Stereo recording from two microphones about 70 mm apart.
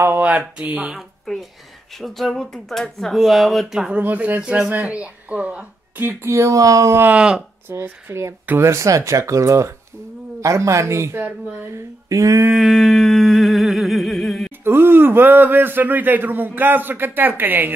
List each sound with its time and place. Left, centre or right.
0.0 s a man's voice: right
0.9 s speech: centre
3.9 s a man's voice: right
6.3 s speech: right
7.2 s speech: centre
7.6 s speech: right
11.1 s speech: right
11.7 s speech: right
12.5 s humming: centre
14.6 s a man's voice: right